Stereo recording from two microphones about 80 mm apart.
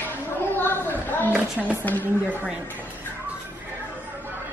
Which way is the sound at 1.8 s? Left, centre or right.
Left.